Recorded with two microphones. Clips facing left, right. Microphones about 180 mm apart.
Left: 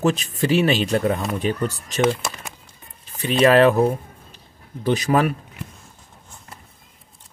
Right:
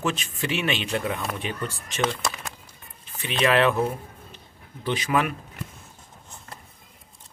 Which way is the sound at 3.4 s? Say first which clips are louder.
Left 7 dB; 40° left (ahead or behind).